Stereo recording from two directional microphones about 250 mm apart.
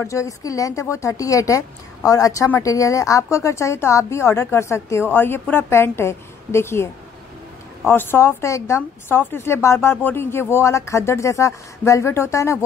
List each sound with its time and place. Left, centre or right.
0.0 s speech: centre